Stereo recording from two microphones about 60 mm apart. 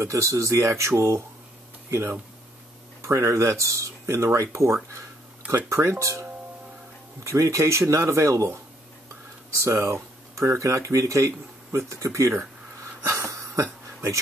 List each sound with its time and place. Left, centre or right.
0.0 s speech: right
3.0 s speech: right
7.2 s speech: right
9.6 s speech: right
13.0 s a sound: right